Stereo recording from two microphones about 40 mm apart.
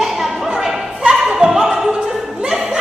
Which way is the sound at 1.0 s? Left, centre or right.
Centre.